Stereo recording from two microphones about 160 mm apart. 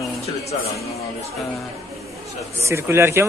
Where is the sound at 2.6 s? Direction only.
15° right (ahead or behind).